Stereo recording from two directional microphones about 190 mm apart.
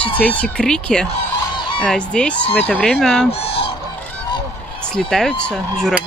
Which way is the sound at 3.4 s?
30° left (ahead or behind).